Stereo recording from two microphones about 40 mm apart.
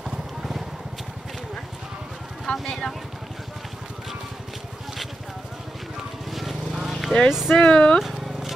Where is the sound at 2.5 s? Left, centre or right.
Centre.